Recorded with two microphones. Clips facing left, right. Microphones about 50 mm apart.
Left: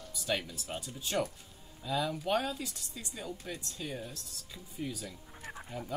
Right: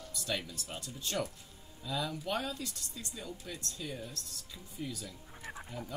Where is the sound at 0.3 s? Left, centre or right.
Centre.